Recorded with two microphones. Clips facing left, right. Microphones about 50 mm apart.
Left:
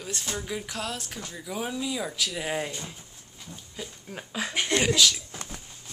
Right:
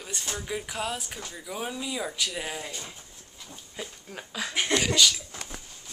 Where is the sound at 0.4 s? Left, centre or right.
Centre.